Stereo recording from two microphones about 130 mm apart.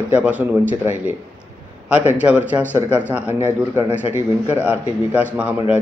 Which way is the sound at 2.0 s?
10° right (ahead or behind).